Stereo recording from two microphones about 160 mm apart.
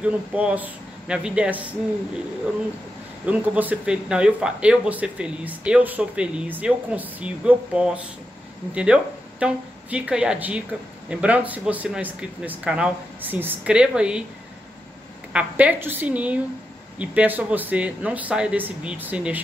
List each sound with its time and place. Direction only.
0.0 s speech: 10° right (ahead or behind)
3.3 s speech: 10° right (ahead or behind)
15.3 s speech: 10° right (ahead or behind)